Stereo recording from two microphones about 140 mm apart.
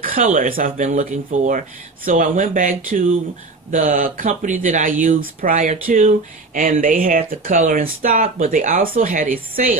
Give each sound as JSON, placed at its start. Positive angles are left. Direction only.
{"t": 0.0, "sound": "speech", "side_deg": -80}
{"t": 0.8, "sound": "speech", "side_deg": -55}
{"t": 2.0, "sound": "speech", "side_deg": -70}